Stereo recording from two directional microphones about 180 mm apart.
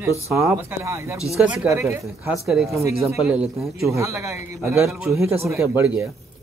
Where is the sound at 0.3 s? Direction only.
15° right (ahead or behind).